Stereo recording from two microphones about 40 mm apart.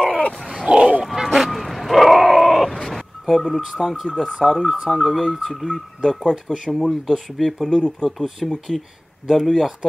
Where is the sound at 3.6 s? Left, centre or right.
Centre.